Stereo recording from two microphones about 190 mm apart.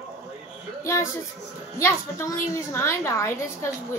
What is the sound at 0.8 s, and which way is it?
A woman's voice, 15° left (ahead or behind).